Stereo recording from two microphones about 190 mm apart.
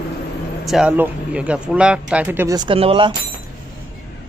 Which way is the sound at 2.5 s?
30° right (ahead or behind).